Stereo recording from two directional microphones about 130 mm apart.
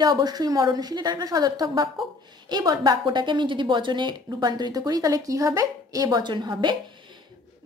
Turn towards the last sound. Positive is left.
turn(degrees=-35)  # may be behind; listen again after turning